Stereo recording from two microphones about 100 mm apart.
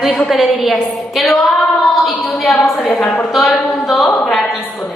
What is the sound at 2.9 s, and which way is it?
Speech, 15° left (ahead or behind).